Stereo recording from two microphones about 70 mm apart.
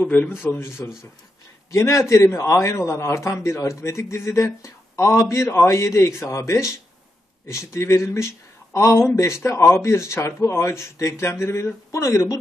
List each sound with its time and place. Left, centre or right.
0.0 s speech: left
0.4 s speech: left